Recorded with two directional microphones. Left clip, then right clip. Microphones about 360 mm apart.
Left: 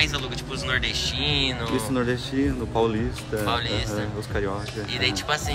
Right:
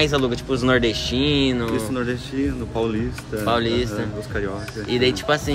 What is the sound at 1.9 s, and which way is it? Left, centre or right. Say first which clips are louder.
Speech: even; left.